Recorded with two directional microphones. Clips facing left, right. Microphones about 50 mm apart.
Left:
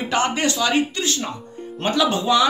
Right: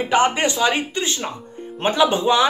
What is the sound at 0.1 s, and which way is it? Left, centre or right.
Speech, centre.